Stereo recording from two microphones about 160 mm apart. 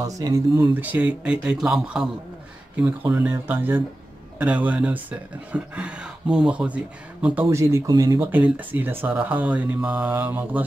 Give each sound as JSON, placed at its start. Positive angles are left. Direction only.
{"t": 0.0, "sound": "speech", "side_deg": -20}
{"t": 0.7, "sound": "speech", "side_deg": -10}
{"t": 3.1, "sound": "speech", "side_deg": -10}
{"t": 8.3, "sound": "speech", "side_deg": -10}